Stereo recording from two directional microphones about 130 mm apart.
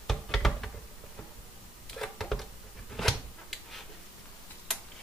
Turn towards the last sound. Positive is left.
turn(degrees=0)  # may be behind; listen again after turning